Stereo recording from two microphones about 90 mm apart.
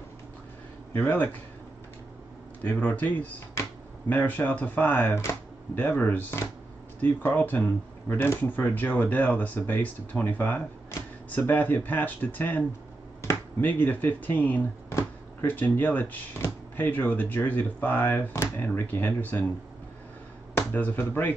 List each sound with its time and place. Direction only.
0.9 s speech: 20° left (ahead or behind)
2.6 s speech: 15° left (ahead or behind)
20.7 s speech: 20° left (ahead or behind)